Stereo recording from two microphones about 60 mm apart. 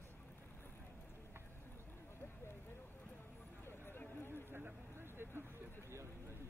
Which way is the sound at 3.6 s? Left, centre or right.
Left.